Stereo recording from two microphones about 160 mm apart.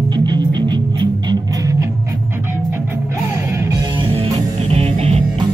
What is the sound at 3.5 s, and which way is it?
Music, 20° right (ahead or behind).